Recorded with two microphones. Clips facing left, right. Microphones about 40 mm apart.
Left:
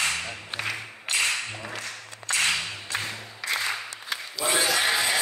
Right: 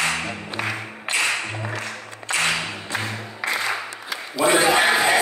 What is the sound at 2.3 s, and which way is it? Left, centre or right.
Music, right.